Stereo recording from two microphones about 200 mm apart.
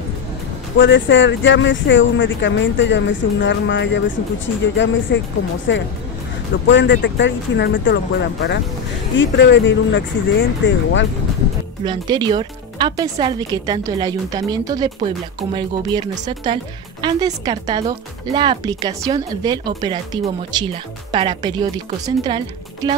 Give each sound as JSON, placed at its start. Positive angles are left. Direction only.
{"t": 0.7, "sound": "speech", "side_deg": 65}
{"t": 11.8, "sound": "speech", "side_deg": -20}